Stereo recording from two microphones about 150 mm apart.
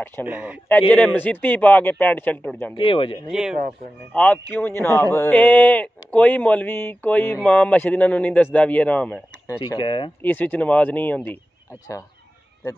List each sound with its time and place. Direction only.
0.0 s speech: 15° left (ahead or behind)
0.3 s speech: 10° right (ahead or behind)
0.7 s speech: 10° left (ahead or behind)
2.7 s speech: 35° left (ahead or behind)
3.3 s speech: 5° right (ahead or behind)
4.1 s speech: 10° left (ahead or behind)
9.7 s speech: 30° left (ahead or behind)
10.2 s speech: 10° left (ahead or behind)